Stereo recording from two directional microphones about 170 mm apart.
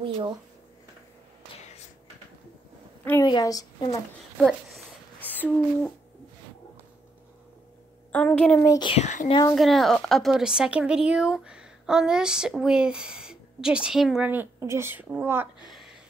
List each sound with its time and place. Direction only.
1.5 s a sound: 30° left (ahead or behind)
3.3 s a woman's voice: 20° left (ahead or behind)
4.4 s a sound: centre (ahead or behind)
5.3 s speech: 10° left (ahead or behind)
8.1 s speech: 10° left (ahead or behind)
8.6 s a woman's voice: 25° left (ahead or behind)
8.9 s a child's voice: 45° left (ahead or behind)
9.3 s a woman's voice: 20° left (ahead or behind)
9.6 s speech: centre (ahead or behind)